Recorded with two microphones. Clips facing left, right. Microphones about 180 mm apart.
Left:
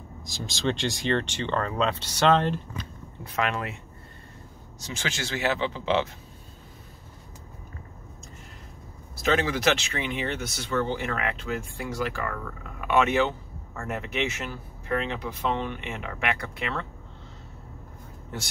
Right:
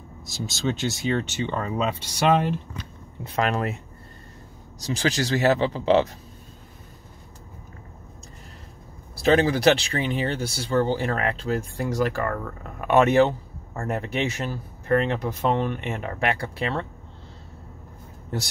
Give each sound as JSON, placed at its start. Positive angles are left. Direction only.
{"t": 0.2, "sound": "speech", "side_deg": -5}
{"t": 3.3, "sound": "speech", "side_deg": -40}
{"t": 9.1, "sound": "speech", "side_deg": -35}
{"t": 14.9, "sound": "speech", "side_deg": -45}